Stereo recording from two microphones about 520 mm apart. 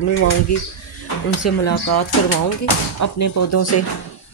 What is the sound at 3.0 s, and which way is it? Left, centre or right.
Speech, left.